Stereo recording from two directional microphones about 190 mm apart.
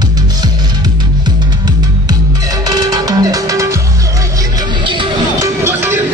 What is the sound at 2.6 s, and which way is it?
Music, 20° right (ahead or behind).